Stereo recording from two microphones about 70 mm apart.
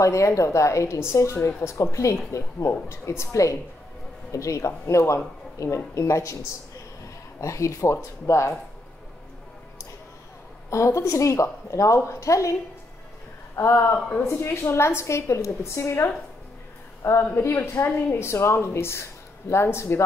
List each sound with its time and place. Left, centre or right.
0.0 s a woman's voice: left
7.3 s a woman's voice: left
10.7 s a woman's voice: left
13.6 s a woman's voice: left
13.9 s speech: centre
14.2 s a woman's voice: left